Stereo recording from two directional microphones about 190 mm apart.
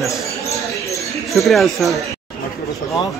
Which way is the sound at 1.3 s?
Centre (ahead or behind).